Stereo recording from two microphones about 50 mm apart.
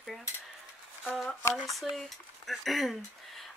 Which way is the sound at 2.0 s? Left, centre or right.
Centre.